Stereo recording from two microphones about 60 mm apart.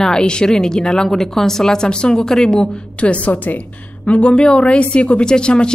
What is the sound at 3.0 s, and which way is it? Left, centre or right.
A woman's voice, left.